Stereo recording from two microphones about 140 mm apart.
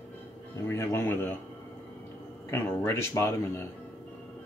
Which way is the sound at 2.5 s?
15° left (ahead or behind).